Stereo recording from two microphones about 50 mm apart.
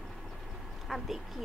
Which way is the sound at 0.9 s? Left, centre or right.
Centre.